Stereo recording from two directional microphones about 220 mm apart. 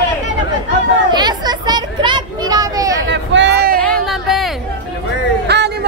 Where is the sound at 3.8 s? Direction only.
Centre (ahead or behind).